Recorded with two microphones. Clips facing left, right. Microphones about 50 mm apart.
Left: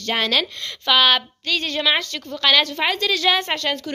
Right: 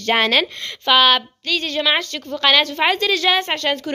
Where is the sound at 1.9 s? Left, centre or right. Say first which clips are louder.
Right 1 dB; centre.